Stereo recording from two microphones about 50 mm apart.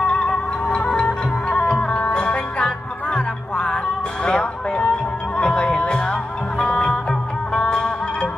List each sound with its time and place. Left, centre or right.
0.7 s music: left